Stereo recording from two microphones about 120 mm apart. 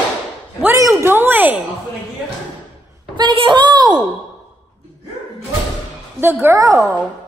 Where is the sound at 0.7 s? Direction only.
25° right (ahead or behind).